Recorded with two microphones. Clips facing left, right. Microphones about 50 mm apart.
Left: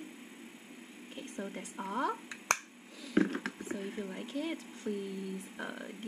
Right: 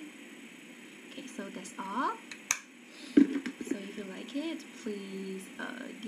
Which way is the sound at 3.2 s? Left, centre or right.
Left.